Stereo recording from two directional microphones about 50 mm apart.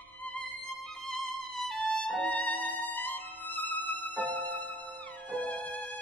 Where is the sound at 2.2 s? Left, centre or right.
Left.